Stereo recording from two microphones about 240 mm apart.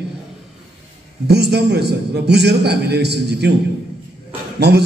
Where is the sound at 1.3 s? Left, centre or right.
Right.